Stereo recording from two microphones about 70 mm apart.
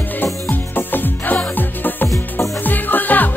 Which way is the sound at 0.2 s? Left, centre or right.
Left.